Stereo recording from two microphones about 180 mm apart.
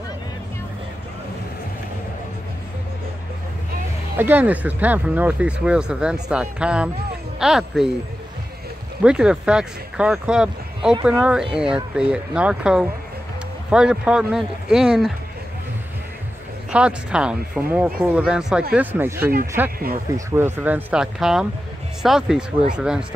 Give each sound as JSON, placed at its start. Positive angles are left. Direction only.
{"t": 4.2, "sound": "speech", "side_deg": -10}
{"t": 9.0, "sound": "speech", "side_deg": -5}
{"t": 16.7, "sound": "speech", "side_deg": -5}